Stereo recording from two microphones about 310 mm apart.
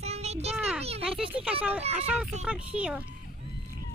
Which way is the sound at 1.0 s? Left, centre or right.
Centre.